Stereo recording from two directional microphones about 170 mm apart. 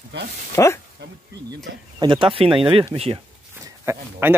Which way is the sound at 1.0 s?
90° right.